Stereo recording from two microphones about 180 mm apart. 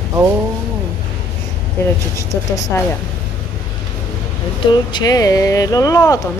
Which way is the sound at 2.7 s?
15° left (ahead or behind).